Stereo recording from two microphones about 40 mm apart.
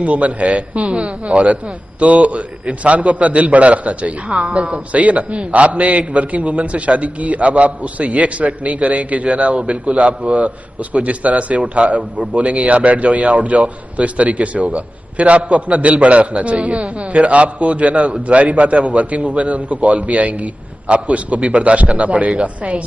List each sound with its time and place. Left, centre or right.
0.0 s a man's voice: right